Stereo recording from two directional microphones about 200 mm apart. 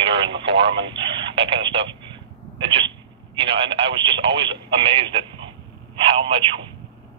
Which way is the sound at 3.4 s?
25° right (ahead or behind).